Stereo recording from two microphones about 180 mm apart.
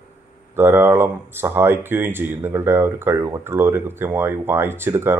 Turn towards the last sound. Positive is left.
turn(degrees=-15)  # may be behind; listen again after turning